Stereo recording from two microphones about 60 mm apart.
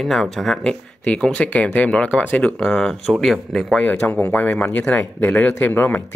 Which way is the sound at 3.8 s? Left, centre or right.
Left.